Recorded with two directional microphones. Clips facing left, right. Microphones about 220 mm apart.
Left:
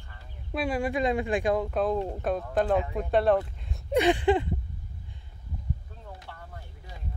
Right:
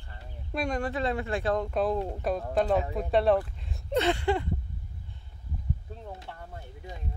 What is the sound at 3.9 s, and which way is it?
Speech, 15° left (ahead or behind).